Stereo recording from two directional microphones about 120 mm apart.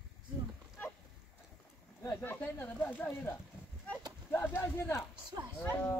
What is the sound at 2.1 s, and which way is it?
Speech, 20° left (ahead or behind).